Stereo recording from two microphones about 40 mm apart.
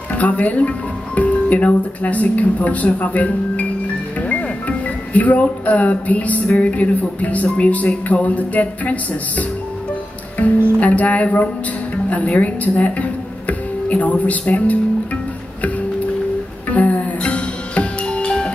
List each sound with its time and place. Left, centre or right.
0.1 s speech: left
10.8 s a woman's voice: left
16.6 s music: left
17.3 s music: left